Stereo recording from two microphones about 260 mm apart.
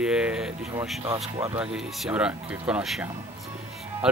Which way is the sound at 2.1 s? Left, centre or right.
Centre.